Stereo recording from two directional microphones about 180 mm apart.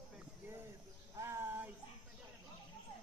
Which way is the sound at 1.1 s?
15° right (ahead or behind).